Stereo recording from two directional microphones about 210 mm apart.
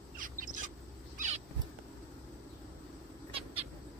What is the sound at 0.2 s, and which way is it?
Bird, 40° right (ahead or behind).